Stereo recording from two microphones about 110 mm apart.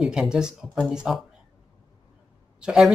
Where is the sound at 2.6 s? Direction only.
5° right (ahead or behind).